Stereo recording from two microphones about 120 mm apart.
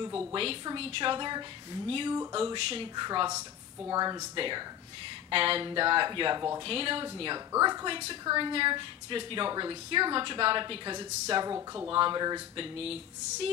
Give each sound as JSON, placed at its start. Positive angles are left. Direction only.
{"t": 0.3, "sound": "speech", "side_deg": -50}
{"t": 6.6, "sound": "speech", "side_deg": -50}
{"t": 7.5, "sound": "speech", "side_deg": -30}
{"t": 7.9, "sound": "speech", "side_deg": -50}
{"t": 12.5, "sound": "speech", "side_deg": -55}